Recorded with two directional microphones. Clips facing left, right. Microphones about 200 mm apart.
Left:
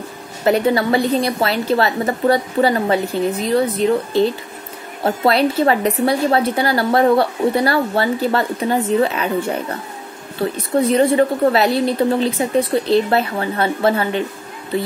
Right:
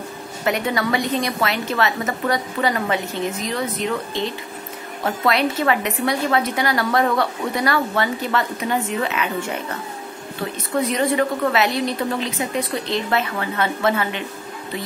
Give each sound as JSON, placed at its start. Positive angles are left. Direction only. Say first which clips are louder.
{"t": 0.5, "sound": "a woman's voice", "louder": "left 6 dB", "side_deg": 30}
{"t": 5.0, "sound": "a woman's voice", "louder": "left 4 dB", "side_deg": 30}
{"t": 10.8, "sound": "a woman's voice", "louder": "left 6 dB", "side_deg": 30}